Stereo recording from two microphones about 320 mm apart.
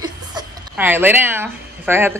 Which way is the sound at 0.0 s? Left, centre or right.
Centre.